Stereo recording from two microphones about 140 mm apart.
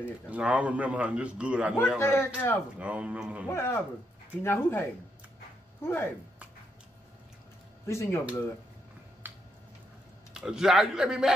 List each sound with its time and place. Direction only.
0.0 s a man's voice: 10° right (ahead or behind)
2.0 s a man's voice: 20° left (ahead or behind)
2.8 s a man's voice: 10° right (ahead or behind)
3.4 s speech: 20° left (ahead or behind)
7.8 s speech: 20° left (ahead or behind)
9.2 s a sound: 15° right (ahead or behind)
10.3 s speech: 5° right (ahead or behind)